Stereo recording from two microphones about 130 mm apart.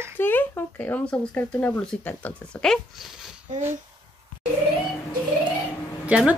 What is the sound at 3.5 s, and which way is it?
Speech, 75° right (ahead or behind).